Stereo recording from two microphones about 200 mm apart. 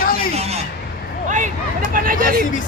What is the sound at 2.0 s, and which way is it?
Speech, 45° right (ahead or behind).